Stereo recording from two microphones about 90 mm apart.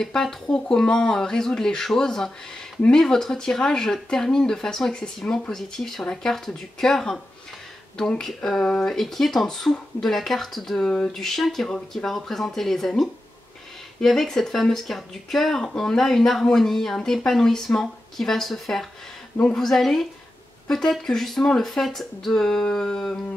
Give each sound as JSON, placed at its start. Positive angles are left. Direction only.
{"t": 0.0, "sound": "speech", "side_deg": 5}